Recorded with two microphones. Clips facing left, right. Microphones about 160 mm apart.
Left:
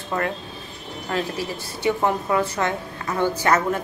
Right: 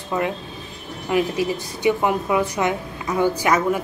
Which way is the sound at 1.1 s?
15° right (ahead or behind).